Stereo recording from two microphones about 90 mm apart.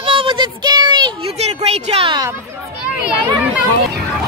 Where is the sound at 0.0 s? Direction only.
75° right (ahead or behind).